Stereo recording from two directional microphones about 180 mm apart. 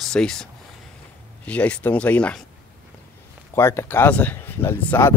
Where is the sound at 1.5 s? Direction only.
5° left (ahead or behind).